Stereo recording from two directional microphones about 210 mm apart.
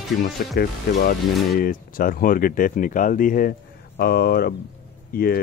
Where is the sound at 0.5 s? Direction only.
45° left (ahead or behind).